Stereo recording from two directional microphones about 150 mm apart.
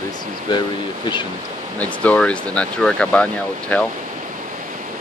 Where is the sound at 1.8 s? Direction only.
10° left (ahead or behind).